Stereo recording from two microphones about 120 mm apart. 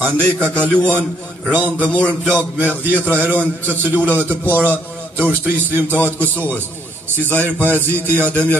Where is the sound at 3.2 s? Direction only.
15° right (ahead or behind).